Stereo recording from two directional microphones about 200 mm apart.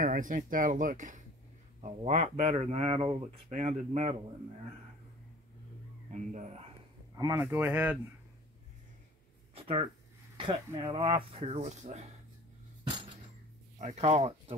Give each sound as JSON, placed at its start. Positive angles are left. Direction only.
{"t": 0.0, "sound": "speech", "side_deg": -45}
{"t": 6.3, "sound": "speech", "side_deg": -35}
{"t": 7.2, "sound": "speech", "side_deg": -15}
{"t": 9.6, "sound": "a sound", "side_deg": -30}
{"t": 10.3, "sound": "speech", "side_deg": -25}
{"t": 13.7, "sound": "speech", "side_deg": -35}